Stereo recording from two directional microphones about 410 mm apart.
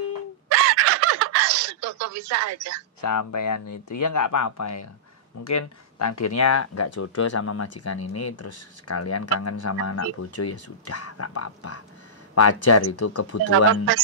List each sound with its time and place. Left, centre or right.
0.5 s a sound: right
3.0 s speech: left
13.5 s speech: right